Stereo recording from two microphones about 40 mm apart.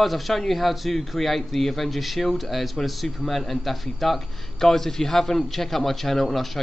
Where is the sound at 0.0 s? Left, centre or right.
Centre.